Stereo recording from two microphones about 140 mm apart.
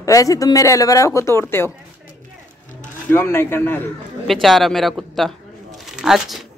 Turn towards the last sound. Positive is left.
turn(degrees=-5)  # may be behind; listen again after turning